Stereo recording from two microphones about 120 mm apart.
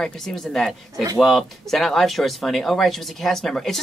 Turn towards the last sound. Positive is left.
turn(degrees=5)  # may be behind; listen again after turning